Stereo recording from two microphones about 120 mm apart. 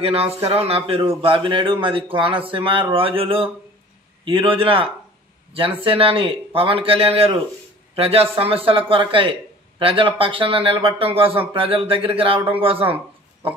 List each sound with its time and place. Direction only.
0.0 s a man's voice: 55° right (ahead or behind)